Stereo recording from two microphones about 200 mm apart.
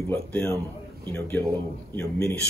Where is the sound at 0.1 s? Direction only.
5° left (ahead or behind).